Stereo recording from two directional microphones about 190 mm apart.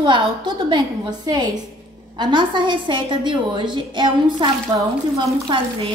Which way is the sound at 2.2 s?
25° right (ahead or behind).